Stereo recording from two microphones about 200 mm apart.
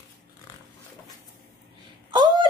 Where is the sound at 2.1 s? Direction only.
20° right (ahead or behind).